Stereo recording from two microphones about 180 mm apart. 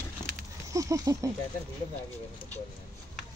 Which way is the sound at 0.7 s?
20° right (ahead or behind).